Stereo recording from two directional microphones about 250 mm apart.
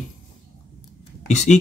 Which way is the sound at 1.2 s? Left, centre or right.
Left.